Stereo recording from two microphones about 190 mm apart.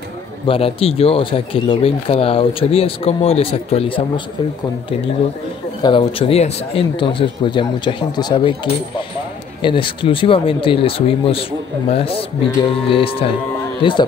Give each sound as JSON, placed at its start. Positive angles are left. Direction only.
{"t": 0.5, "sound": "speech", "side_deg": 30}
{"t": 5.8, "sound": "speech", "side_deg": 25}